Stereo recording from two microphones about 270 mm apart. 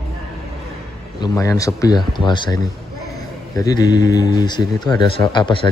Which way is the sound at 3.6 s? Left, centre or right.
Centre.